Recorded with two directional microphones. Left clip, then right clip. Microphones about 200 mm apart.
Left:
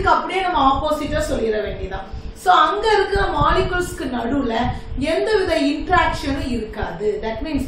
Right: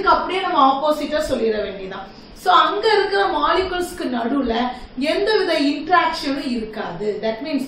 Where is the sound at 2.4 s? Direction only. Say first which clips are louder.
Even; 15° right (ahead or behind).